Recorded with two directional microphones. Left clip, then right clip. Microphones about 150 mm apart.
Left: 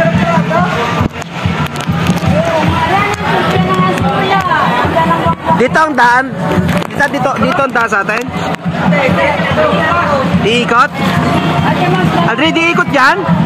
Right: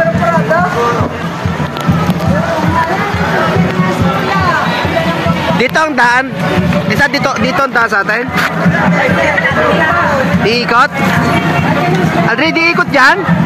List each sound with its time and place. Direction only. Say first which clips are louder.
5.6 s speech: even; centre (ahead or behind)
10.4 s speech: even; 20° left (ahead or behind)
12.4 s speech: right 1 dB; 15° left (ahead or behind)